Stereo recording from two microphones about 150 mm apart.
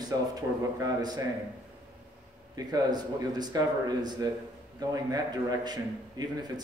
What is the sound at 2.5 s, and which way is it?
Speech, 25° right (ahead or behind).